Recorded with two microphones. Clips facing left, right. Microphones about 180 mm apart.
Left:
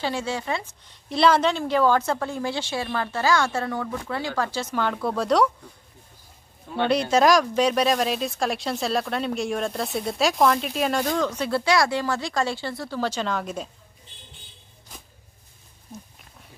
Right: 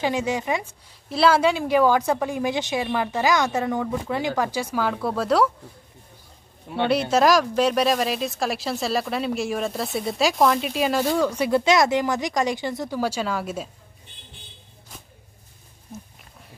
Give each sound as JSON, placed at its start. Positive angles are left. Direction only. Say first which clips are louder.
{"t": 0.0, "sound": "a woman's voice", "louder": "right 4 dB", "side_deg": -15}
{"t": 6.7, "sound": "a woman's voice", "louder": "even", "side_deg": -5}